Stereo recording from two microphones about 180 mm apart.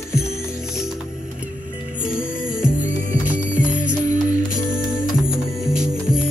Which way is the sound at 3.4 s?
45° right (ahead or behind).